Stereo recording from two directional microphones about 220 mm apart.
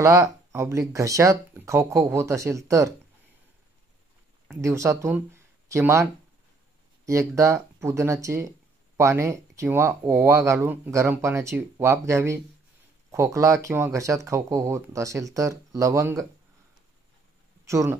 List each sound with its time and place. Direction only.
0.0 s speech: 15° right (ahead or behind)
4.6 s speech: 15° right (ahead or behind)
7.1 s speech: 15° right (ahead or behind)
17.6 s speech: 15° right (ahead or behind)